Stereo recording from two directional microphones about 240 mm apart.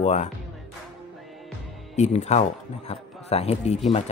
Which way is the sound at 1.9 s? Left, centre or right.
Left.